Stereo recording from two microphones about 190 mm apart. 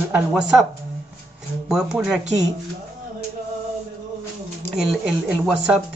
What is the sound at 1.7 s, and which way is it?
Speech, 5° right (ahead or behind).